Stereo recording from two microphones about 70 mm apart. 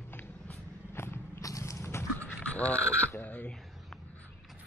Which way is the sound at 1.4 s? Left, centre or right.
Left.